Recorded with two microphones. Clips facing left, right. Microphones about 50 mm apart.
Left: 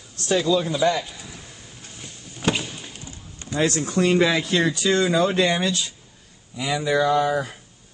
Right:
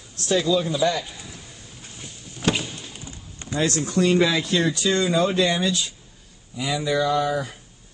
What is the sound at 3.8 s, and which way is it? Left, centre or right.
Speech, left.